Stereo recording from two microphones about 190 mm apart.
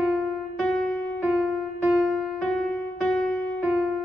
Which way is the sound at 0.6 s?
10° left (ahead or behind).